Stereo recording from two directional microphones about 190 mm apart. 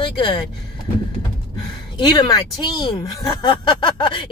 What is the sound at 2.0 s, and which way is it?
Speech, 20° left (ahead or behind).